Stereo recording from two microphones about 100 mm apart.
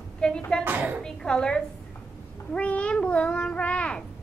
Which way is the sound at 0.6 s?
20° right (ahead or behind).